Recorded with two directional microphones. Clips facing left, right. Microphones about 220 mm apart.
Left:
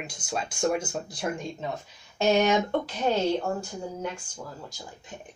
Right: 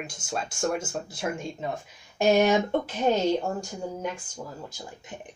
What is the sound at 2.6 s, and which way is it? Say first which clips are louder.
Speech: right 1 dB; 15° right (ahead or behind).